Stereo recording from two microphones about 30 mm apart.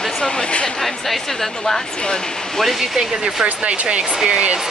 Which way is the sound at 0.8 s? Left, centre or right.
Centre.